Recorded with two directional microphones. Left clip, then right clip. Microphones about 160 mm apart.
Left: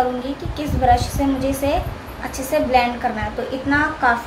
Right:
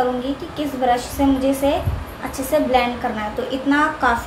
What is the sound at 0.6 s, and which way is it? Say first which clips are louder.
A woman's voice: left 3 dB; 10° right (ahead or behind).